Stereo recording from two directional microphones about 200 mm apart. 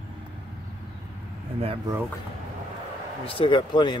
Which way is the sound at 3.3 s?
25° left (ahead or behind).